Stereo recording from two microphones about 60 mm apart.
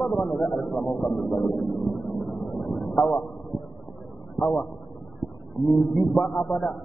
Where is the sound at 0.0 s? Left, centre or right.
Centre.